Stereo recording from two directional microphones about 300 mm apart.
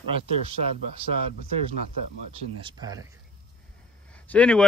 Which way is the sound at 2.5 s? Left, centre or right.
Centre.